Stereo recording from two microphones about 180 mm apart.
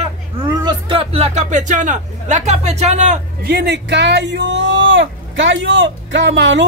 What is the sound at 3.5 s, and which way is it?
Speech, 65° right (ahead or behind).